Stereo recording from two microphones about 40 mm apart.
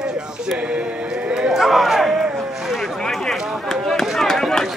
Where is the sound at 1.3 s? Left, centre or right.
Right.